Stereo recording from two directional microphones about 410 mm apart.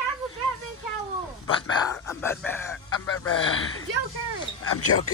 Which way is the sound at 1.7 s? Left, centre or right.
Centre.